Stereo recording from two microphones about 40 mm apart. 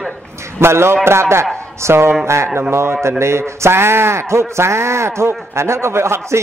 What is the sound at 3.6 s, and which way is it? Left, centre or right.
Speech, right.